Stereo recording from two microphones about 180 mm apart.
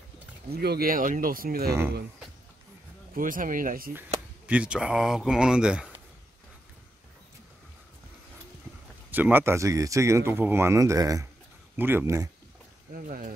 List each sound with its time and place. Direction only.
0.5 s speech: 60° right (ahead or behind)
3.2 s speech: 50° right (ahead or behind)
4.5 s speech: 5° right (ahead or behind)
9.1 s speech: 10° right (ahead or behind)
12.9 s speech: 50° right (ahead or behind)